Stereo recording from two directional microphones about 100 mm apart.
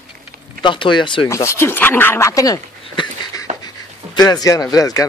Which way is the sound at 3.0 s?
55° left (ahead or behind).